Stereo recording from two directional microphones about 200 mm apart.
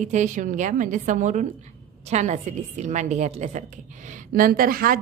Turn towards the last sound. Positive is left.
turn(degrees=-45)  # may be behind; listen again after turning